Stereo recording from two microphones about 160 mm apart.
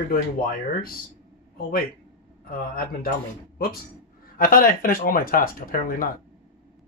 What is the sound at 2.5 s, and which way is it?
Speech, 60° left (ahead or behind).